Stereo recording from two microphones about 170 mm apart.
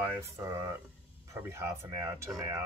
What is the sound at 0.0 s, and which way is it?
Speech, 15° right (ahead or behind).